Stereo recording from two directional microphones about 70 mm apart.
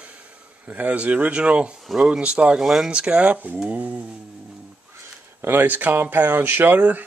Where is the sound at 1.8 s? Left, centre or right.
Centre.